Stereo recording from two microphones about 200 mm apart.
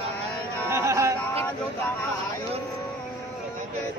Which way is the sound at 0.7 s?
15° right (ahead or behind).